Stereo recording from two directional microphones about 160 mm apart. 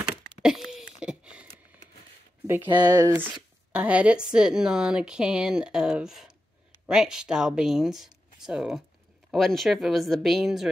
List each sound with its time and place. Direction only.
0.4 s a sound: 5° right (ahead or behind)
2.4 s speech: 15° right (ahead or behind)
3.2 s speech: 10° right (ahead or behind)